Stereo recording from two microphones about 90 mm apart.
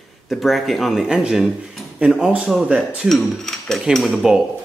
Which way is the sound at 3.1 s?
5° left (ahead or behind).